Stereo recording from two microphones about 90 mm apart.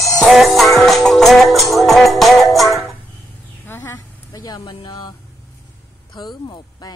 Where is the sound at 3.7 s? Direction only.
30° left (ahead or behind).